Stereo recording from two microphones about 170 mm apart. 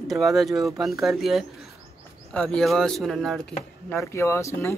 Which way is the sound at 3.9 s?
15° left (ahead or behind).